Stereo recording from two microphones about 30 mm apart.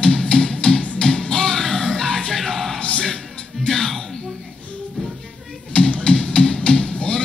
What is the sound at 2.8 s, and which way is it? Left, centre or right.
Music, left.